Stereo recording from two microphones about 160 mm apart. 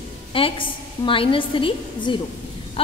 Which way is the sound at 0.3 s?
35° left (ahead or behind).